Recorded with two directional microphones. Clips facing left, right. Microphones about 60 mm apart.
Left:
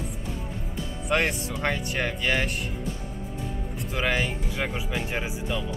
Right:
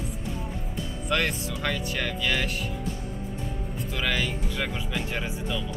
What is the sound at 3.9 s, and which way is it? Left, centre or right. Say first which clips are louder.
Speech: left 2 dB; left.